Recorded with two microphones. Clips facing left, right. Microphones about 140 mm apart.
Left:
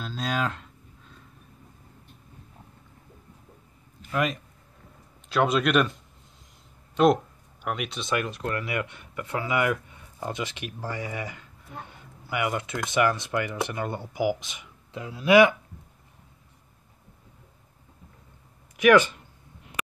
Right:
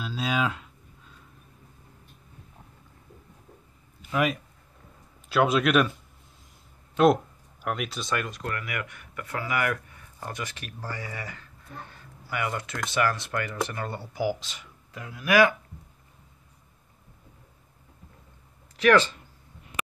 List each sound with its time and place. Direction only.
0.0 s a sound: 5° right (ahead or behind)
4.1 s speech: 5° right (ahead or behind)
7.6 s speech: centre (ahead or behind)
8.4 s speech: 25° left (ahead or behind)
18.8 s speech: 15° left (ahead or behind)